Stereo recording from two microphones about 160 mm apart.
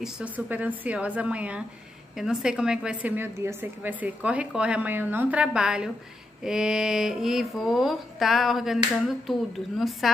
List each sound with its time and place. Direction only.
0.0 s a woman's voice: 10° right (ahead or behind)